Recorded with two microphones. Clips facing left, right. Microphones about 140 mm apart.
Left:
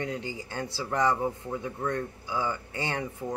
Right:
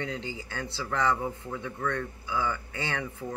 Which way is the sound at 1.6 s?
35° left (ahead or behind).